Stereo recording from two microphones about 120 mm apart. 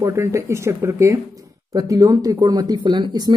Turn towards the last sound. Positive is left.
turn(degrees=-35)  # may be behind; listen again after turning